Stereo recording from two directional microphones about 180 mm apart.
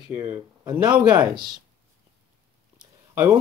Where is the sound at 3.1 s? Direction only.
10° right (ahead or behind).